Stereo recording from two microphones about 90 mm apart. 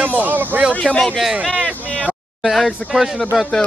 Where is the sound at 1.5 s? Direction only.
15° right (ahead or behind).